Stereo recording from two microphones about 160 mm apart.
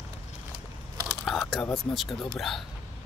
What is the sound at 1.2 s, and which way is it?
Speech, 5° left (ahead or behind).